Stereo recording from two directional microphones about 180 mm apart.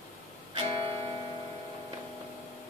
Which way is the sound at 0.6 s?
30° right (ahead or behind).